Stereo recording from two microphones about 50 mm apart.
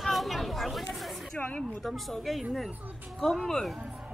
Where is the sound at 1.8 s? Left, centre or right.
Centre.